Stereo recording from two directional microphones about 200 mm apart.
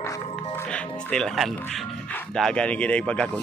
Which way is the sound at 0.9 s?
5° left (ahead or behind).